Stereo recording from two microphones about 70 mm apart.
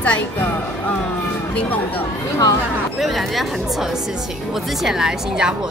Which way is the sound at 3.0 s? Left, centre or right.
Centre.